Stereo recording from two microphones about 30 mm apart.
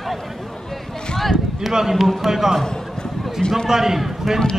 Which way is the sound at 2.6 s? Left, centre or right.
Left.